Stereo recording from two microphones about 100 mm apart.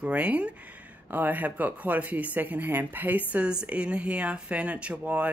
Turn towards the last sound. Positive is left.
turn(degrees=-15)  # may be behind; listen again after turning